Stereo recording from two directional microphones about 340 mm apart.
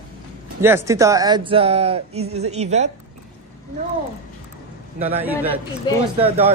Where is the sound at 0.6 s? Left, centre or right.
Centre.